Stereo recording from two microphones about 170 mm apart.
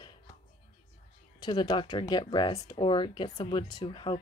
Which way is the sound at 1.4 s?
25° left (ahead or behind).